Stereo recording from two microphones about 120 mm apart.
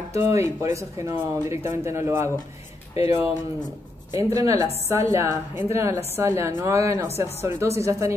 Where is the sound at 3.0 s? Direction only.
60° left (ahead or behind).